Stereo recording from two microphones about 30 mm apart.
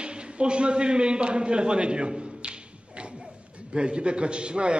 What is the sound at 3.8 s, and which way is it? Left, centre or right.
A man's voice, right.